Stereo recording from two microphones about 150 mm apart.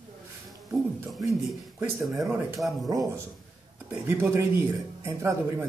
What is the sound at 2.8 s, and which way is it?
A man's voice, 25° right (ahead or behind).